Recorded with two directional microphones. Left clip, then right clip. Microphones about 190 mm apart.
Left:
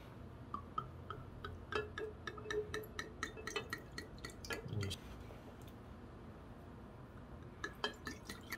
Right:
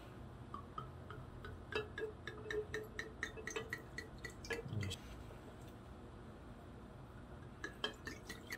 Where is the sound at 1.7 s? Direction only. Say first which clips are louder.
Left 1 dB; 25° left (ahead or behind).